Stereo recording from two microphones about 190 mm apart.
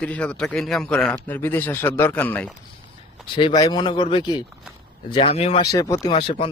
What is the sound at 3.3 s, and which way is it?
Speech, 20° left (ahead or behind).